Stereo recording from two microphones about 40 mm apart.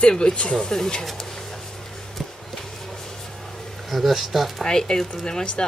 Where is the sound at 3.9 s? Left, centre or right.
Centre.